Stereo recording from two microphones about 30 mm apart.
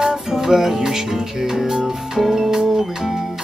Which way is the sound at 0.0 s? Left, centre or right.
Centre.